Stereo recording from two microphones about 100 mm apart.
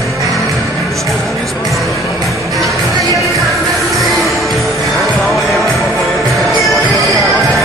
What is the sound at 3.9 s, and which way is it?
Music, centre (ahead or behind).